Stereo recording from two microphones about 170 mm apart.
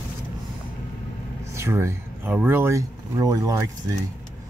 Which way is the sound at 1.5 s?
15° right (ahead or behind).